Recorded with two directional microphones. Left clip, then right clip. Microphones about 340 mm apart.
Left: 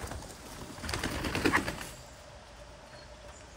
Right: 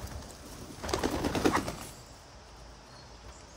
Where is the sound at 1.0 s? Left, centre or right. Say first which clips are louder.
Right 2 dB; centre.